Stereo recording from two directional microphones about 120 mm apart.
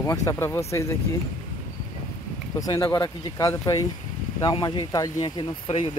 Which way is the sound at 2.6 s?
30° left (ahead or behind).